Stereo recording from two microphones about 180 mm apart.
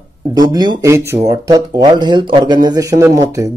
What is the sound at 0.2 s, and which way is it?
A man's voice, 20° right (ahead or behind).